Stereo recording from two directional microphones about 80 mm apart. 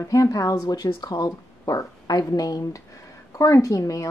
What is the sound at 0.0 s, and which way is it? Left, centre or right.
Speech, left.